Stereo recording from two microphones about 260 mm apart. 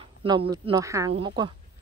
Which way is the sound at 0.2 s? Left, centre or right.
Centre.